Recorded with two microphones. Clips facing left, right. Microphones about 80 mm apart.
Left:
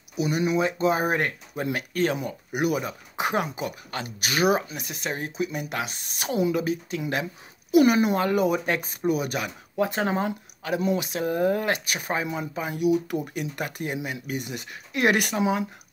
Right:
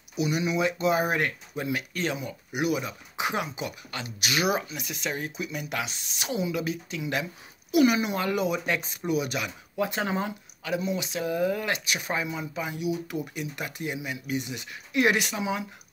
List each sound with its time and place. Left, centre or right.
0.2 s speech: left
5.9 s speech: left
10.8 s speech: left